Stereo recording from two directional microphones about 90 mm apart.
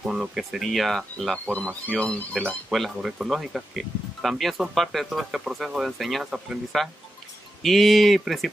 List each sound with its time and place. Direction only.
0.0 s speech: 5° right (ahead or behind)
2.0 s speech: 10° left (ahead or behind)
2.7 s speech: 5° right (ahead or behind)